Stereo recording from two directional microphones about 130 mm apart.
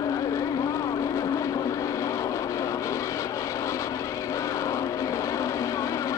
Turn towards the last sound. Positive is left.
turn(degrees=25)  # may be behind; listen again after turning